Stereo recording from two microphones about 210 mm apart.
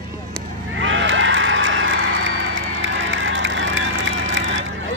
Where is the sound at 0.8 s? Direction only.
65° right (ahead or behind).